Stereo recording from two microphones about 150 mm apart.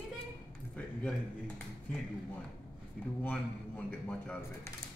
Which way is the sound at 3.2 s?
10° left (ahead or behind).